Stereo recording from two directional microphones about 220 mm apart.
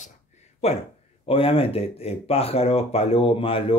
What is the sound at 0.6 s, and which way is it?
Speech, 30° left (ahead or behind).